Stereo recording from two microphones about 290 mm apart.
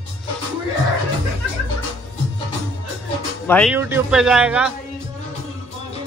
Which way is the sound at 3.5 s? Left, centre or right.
Centre.